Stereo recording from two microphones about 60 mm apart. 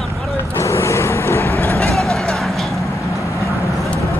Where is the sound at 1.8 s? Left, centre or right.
Centre.